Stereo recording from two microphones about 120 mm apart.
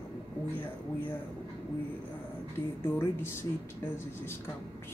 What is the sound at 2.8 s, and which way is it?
A woman's voice, 20° left (ahead or behind).